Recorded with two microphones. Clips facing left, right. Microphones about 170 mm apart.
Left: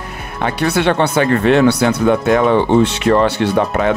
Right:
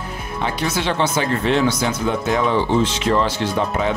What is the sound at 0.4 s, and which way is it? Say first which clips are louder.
Speech: left 6 dB; 65° left (ahead or behind).